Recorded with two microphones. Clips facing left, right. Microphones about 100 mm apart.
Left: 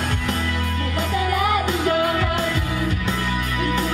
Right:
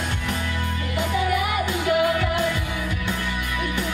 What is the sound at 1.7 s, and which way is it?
Music, 35° left (ahead or behind).